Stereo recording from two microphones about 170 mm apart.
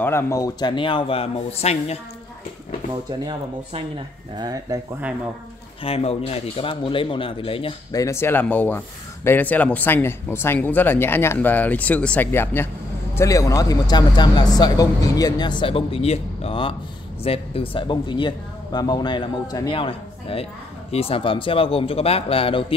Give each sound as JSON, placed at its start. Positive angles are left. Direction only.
{"t": 0.0, "sound": "speech", "side_deg": 15}
{"t": 2.9, "sound": "speech", "side_deg": -25}
{"t": 4.4, "sound": "speech", "side_deg": -20}
{"t": 5.9, "sound": "speech", "side_deg": 35}
{"t": 8.0, "sound": "speech", "side_deg": 15}